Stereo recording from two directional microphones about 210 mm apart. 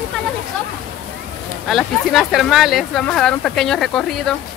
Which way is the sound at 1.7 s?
Centre (ahead or behind).